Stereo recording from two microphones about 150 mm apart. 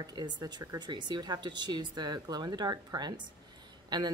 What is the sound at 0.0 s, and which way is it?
A woman's voice, 25° right (ahead or behind).